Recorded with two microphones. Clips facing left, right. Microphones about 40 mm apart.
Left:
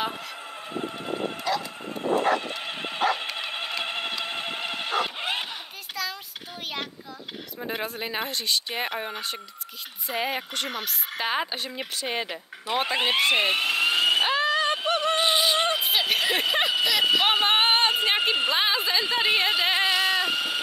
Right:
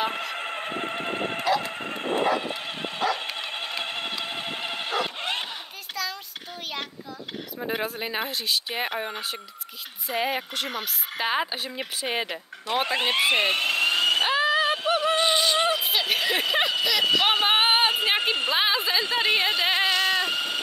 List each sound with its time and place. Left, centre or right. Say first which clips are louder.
0.1 s vehicle: right 6 dB; right
1.7 s dog: right 3 dB; right
2.4 s dog: right 1 dB; centre
3.2 s a sound: even; centre
6.0 s child singing: even; centre
7.5 s speech: right 2 dB; centre
12.6 s a sound: even; centre
14.8 s music: right 1 dB; centre
15.1 s a sound: even; centre